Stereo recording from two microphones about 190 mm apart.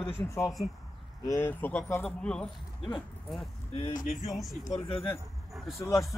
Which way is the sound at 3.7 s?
25° left (ahead or behind).